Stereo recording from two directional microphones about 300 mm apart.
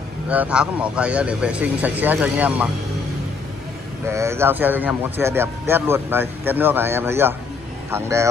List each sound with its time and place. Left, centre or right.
0.3 s speech: centre
4.1 s a man's voice: centre